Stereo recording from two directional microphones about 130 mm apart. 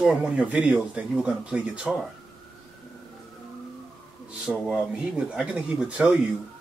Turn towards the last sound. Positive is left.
turn(degrees=-5)  # may be behind; listen again after turning